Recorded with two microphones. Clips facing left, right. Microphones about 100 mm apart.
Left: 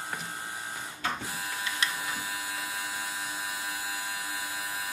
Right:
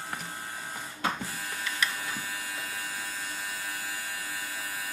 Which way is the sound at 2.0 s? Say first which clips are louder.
Left 1 dB; 20° left (ahead or behind).